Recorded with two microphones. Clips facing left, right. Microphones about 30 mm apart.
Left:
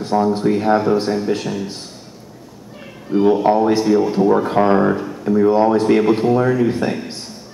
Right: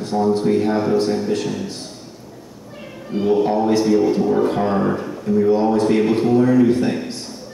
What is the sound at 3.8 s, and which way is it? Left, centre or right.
Speech, centre.